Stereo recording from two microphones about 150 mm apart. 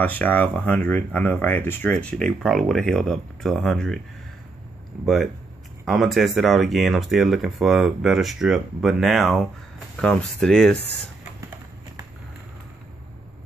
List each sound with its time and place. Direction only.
0.0 s speech: 10° left (ahead or behind)
5.0 s speech: centre (ahead or behind)